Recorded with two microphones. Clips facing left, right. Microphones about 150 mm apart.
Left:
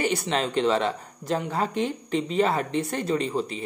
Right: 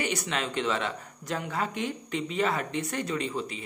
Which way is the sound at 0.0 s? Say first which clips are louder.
Left 5 dB; 35° left (ahead or behind).